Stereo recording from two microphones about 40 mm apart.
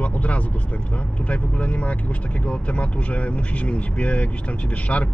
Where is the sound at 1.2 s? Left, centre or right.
Left.